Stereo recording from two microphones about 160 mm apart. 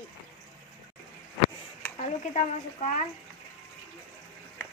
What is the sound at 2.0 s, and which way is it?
A woman's voice, 45° left (ahead or behind).